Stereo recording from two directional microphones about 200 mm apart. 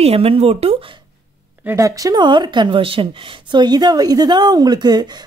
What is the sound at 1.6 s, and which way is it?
Speech, 15° right (ahead or behind).